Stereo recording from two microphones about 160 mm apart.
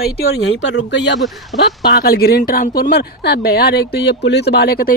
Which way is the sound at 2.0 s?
70° left (ahead or behind).